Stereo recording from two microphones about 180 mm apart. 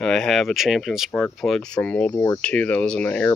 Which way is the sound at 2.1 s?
20° left (ahead or behind).